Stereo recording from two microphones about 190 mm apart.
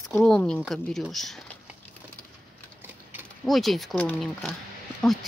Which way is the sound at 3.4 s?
Centre (ahead or behind).